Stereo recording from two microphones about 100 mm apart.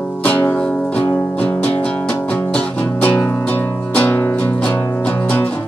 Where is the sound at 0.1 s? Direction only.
15° left (ahead or behind).